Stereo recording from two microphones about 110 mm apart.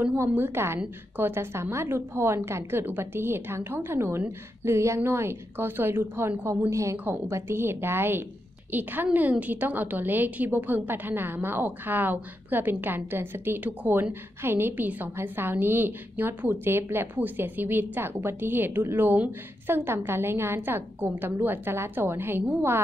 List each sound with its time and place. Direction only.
0.0 s a woman's voice: 15° right (ahead or behind)